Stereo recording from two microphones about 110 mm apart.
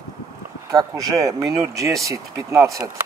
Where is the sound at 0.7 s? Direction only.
30° right (ahead or behind).